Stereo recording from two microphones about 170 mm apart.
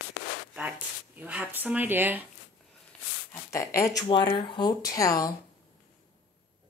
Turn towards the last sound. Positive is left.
turn(degrees=20)  # may be behind; listen again after turning